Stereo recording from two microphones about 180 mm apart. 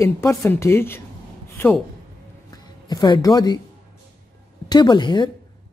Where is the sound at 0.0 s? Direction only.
15° left (ahead or behind).